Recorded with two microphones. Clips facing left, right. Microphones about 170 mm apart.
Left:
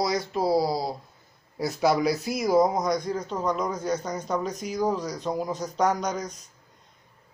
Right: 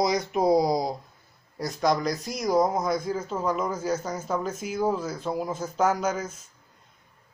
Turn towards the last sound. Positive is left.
turn(degrees=-5)  # may be behind; listen again after turning